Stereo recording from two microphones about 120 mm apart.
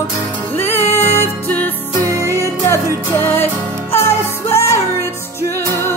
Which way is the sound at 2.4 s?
25° left (ahead or behind).